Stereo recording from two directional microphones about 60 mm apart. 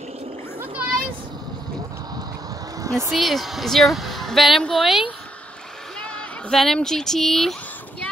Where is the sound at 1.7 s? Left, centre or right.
Right.